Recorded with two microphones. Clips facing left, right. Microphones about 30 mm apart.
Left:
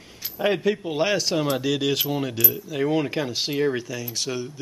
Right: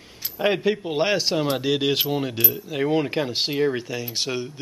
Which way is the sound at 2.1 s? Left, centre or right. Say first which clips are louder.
Right 1 dB; centre.